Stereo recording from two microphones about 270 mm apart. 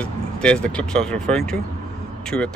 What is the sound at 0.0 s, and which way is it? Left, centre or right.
Speech, centre.